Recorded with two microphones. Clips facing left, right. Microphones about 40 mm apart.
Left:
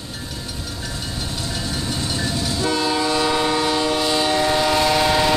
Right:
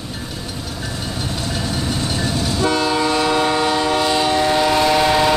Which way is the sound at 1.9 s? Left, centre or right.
Right.